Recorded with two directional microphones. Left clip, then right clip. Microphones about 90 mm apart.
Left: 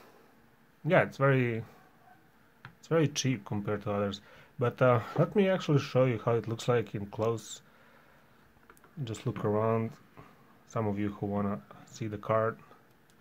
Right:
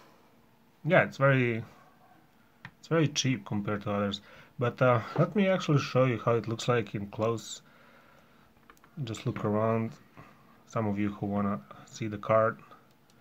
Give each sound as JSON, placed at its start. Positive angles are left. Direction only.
{"t": 0.8, "sound": "speech", "side_deg": 30}
{"t": 2.8, "sound": "speech", "side_deg": 25}
{"t": 9.0, "sound": "speech", "side_deg": 20}